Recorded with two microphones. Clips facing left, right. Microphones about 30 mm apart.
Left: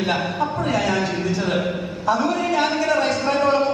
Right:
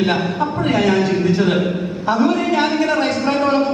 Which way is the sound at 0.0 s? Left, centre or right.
Centre.